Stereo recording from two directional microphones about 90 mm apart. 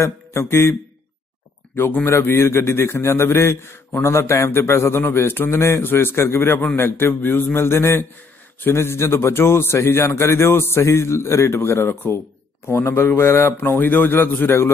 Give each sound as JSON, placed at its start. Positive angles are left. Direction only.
{"t": 0.0, "sound": "speech", "side_deg": 30}
{"t": 1.8, "sound": "a man's voice", "side_deg": 20}